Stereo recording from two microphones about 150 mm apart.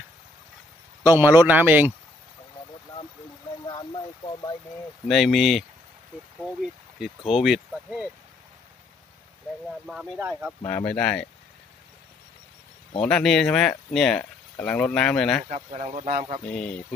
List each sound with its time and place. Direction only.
1.0 s speech: 15° right (ahead or behind)
5.0 s speech: centre (ahead or behind)
9.7 s speech: centre (ahead or behind)
10.7 s speech: 10° left (ahead or behind)
13.0 s speech: 5° left (ahead or behind)
15.5 s speech: 40° right (ahead or behind)
16.5 s speech: 5° left (ahead or behind)